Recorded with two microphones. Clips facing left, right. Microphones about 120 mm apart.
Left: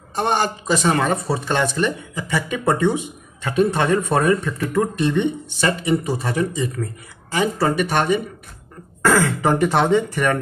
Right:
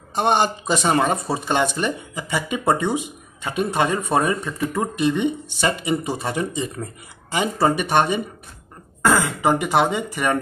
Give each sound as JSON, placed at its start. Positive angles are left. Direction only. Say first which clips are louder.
{"t": 0.1, "sound": "speech", "louder": "right 1 dB", "side_deg": -20}